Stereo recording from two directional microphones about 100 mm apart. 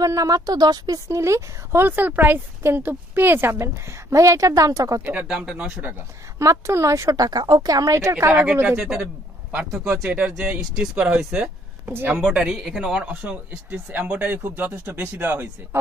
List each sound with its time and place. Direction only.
0.0 s a woman's voice: 35° right (ahead or behind)
5.1 s speech: 10° right (ahead or behind)
6.3 s a woman's voice: 30° right (ahead or behind)
10.0 s speech: 15° right (ahead or behind)
11.9 s a woman's voice: 20° right (ahead or behind)
12.3 s a woman's voice: 5° right (ahead or behind)